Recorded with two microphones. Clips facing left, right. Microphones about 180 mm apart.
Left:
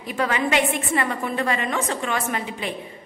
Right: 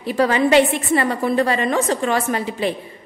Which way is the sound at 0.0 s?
35° right (ahead or behind).